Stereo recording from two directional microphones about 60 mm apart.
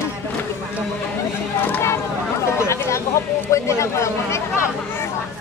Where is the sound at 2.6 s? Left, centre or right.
Left.